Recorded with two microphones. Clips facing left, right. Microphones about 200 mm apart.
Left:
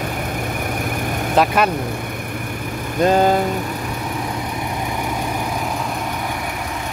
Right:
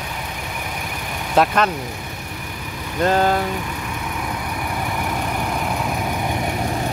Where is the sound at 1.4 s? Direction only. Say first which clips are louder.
Even; centre (ahead or behind).